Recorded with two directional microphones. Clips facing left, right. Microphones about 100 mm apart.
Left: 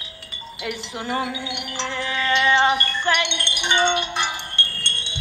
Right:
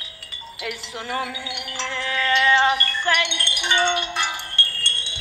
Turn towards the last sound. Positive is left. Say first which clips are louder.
# even
turn(degrees=20)  # may be behind; listen again after turning